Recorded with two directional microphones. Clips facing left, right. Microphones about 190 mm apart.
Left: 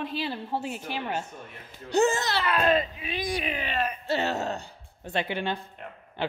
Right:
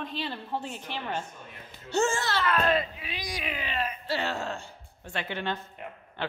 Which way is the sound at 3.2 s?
55° left (ahead or behind).